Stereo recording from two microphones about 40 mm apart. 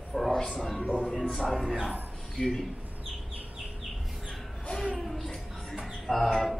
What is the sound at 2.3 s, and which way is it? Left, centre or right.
Speech, centre.